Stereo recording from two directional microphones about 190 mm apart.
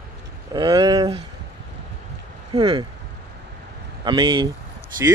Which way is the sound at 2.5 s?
25° right (ahead or behind).